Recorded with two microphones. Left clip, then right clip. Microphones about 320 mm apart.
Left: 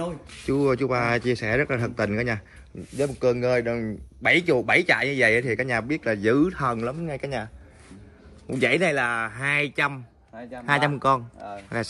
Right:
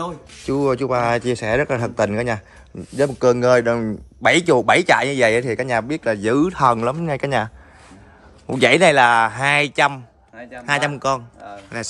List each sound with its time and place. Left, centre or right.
0.0 s a man's voice: centre
8.5 s a man's voice: centre